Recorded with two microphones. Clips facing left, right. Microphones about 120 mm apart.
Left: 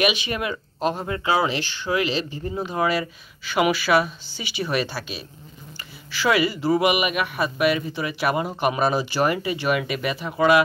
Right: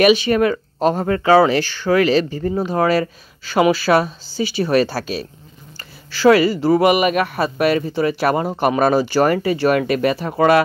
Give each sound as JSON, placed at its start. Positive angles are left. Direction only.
{"t": 0.0, "sound": "speech", "side_deg": -40}
{"t": 2.5, "sound": "speech", "side_deg": -35}
{"t": 5.8, "sound": "a sound", "side_deg": -35}
{"t": 6.7, "sound": "speech", "side_deg": -40}